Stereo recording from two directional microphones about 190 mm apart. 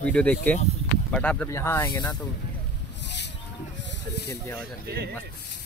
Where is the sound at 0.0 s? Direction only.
5° left (ahead or behind).